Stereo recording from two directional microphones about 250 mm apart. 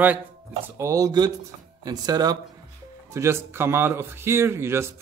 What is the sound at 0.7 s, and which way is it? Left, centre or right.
Speech, centre.